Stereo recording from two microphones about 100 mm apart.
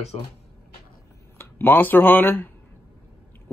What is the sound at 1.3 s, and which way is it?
Speech, 20° left (ahead or behind).